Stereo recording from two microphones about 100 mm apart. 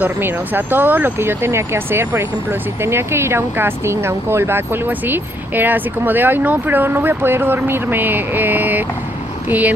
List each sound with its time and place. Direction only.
0.0 s speech: 20° right (ahead or behind)